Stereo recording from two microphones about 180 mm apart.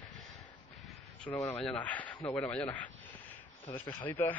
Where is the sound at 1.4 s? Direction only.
10° left (ahead or behind).